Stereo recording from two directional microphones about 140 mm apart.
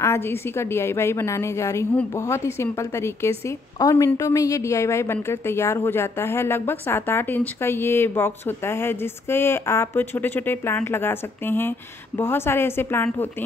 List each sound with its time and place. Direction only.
0.0 s a woman's voice: 15° left (ahead or behind)